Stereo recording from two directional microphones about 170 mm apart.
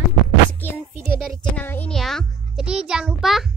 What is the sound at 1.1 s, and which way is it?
A child's voice, centre (ahead or behind).